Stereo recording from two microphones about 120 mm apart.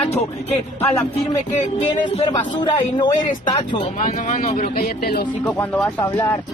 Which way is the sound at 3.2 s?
90° left.